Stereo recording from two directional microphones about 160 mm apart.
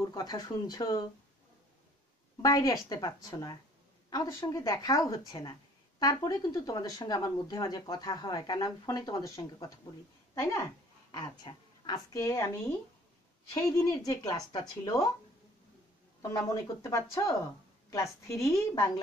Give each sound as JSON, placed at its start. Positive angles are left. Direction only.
{"t": 0.0, "sound": "speech", "side_deg": 25}
{"t": 2.4, "sound": "speech", "side_deg": 20}
{"t": 16.2, "sound": "speech", "side_deg": 20}
{"t": 18.2, "sound": "speech", "side_deg": 20}